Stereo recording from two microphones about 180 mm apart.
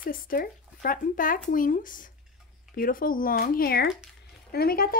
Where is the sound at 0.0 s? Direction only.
50° left (ahead or behind).